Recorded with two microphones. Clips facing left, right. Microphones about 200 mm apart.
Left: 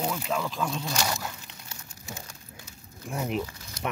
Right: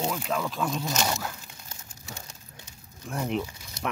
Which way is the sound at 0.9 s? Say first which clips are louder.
Right 2 dB; 20° right (ahead or behind).